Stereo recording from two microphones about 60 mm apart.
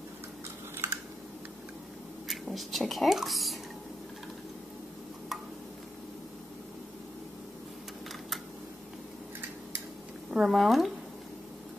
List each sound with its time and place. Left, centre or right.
0.8 s typing: right
2.2 s speech: centre
10.3 s speech: centre